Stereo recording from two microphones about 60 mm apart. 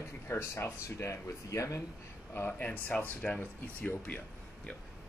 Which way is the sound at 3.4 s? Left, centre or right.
Left.